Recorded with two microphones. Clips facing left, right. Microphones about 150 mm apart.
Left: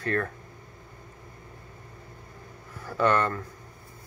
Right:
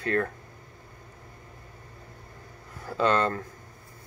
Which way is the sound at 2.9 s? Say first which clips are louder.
Even; 25° right (ahead or behind).